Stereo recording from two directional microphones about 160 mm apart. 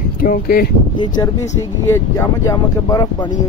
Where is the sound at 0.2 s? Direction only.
65° left (ahead or behind).